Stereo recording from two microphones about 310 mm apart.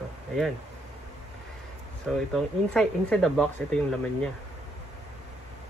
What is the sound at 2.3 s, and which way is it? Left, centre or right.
Speech, centre.